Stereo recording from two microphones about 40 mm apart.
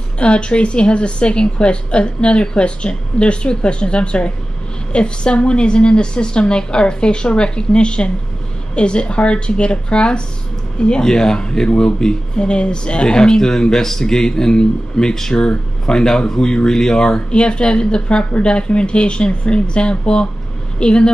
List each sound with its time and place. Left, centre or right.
0.2 s speech: left